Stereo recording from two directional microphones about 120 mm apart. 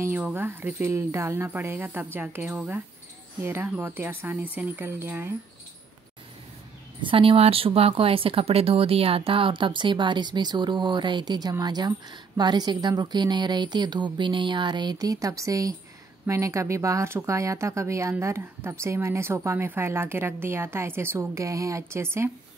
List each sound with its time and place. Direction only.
0.3 s a woman's voice: 20° right (ahead or behind)
2.4 s speech: centre (ahead or behind)
3.4 s speech: 20° right (ahead or behind)
7.0 s a woman's voice: 45° right (ahead or behind); by 22.3 s 20° right (ahead or behind)